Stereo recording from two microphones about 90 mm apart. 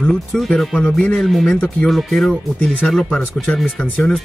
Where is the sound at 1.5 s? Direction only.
15° left (ahead or behind).